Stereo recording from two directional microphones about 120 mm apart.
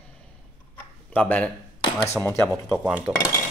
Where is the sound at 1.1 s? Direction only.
15° left (ahead or behind).